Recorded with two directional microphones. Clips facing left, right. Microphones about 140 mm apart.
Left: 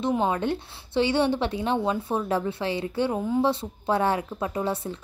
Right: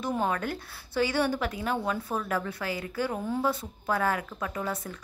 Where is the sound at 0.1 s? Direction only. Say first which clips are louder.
Left 3 dB; 20° left (ahead or behind).